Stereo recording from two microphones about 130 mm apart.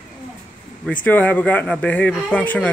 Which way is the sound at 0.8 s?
10° left (ahead or behind).